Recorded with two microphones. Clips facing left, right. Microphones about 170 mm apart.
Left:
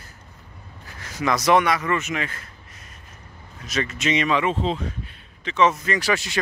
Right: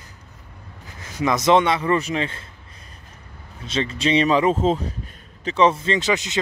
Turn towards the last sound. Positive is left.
turn(degrees=-20)  # may be behind; listen again after turning